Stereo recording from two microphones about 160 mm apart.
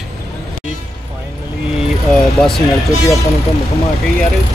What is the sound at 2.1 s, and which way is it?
Speech, centre (ahead or behind).